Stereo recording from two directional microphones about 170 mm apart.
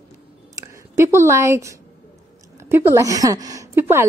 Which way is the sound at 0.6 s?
15° right (ahead or behind).